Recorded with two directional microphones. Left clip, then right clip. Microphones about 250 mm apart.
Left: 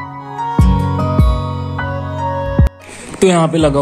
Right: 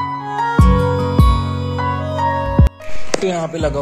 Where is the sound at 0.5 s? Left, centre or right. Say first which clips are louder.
Right 2 dB; centre.